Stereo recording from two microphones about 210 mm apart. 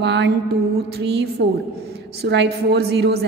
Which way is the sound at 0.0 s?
55° right (ahead or behind).